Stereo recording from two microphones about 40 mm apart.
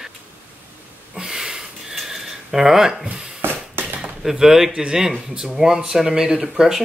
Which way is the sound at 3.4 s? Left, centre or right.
Right.